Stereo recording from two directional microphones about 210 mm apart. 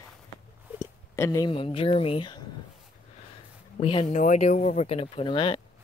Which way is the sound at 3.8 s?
25° left (ahead or behind).